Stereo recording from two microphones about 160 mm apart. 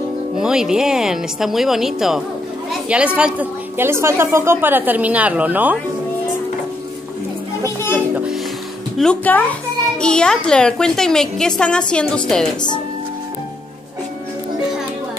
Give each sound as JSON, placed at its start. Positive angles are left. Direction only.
{"t": 0.4, "sound": "a child's voice", "side_deg": -5}
{"t": 7.6, "sound": "a child's voice", "side_deg": 15}